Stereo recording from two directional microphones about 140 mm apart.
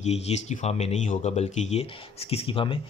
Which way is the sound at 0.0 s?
55° left (ahead or behind).